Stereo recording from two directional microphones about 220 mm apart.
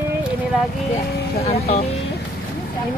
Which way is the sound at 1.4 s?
30° left (ahead or behind).